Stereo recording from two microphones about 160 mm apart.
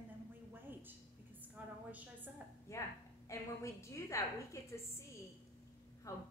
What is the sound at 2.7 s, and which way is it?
A woman's voice, 15° left (ahead or behind).